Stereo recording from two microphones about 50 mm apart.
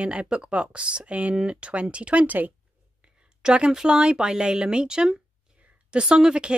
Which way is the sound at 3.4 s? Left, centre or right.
Centre.